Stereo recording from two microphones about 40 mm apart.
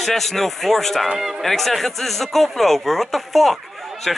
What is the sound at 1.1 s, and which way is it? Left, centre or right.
Speech, centre.